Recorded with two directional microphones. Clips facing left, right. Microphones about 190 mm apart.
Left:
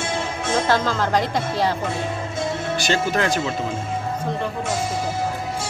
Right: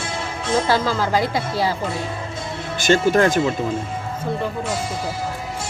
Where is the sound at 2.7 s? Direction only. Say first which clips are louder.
Right 8 dB; 50° right (ahead or behind).